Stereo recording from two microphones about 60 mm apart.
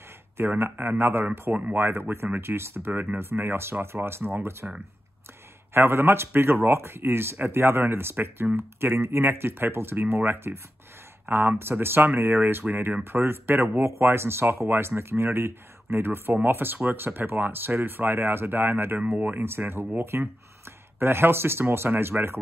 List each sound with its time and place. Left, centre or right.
0.4 s speech: right
1.5 s speech: right
1.8 s speech: right
5.7 s speech: right
18.9 s speech: right
19.4 s speech: right